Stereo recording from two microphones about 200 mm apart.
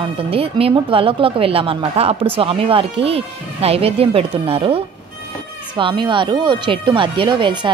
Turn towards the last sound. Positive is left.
turn(degrees=-25)  # may be behind; listen again after turning